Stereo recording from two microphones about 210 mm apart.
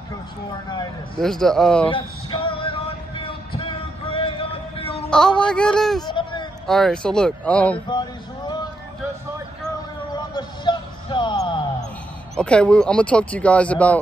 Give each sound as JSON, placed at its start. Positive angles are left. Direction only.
{"t": 1.1, "sound": "speech", "side_deg": 0}
{"t": 1.9, "sound": "music", "side_deg": 25}
{"t": 5.1, "sound": "speech", "side_deg": 5}
{"t": 6.0, "sound": "a sound", "side_deg": 20}
{"t": 6.7, "sound": "speech", "side_deg": 5}
{"t": 7.9, "sound": "speech", "side_deg": 20}
{"t": 10.1, "sound": "music", "side_deg": 20}
{"t": 12.4, "sound": "speech", "side_deg": 5}